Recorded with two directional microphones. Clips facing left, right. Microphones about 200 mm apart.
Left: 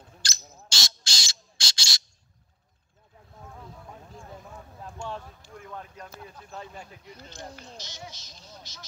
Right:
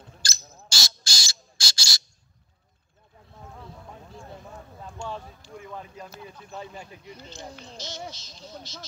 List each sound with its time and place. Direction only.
0.2 s bird: centre (ahead or behind)
4.8 s a sound: centre (ahead or behind)
5.7 s speech: 5° right (ahead or behind)
7.7 s speech: 15° left (ahead or behind)